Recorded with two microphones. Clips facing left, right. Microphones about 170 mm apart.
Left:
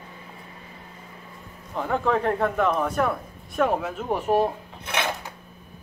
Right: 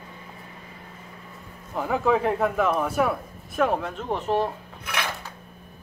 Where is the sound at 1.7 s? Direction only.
5° right (ahead or behind).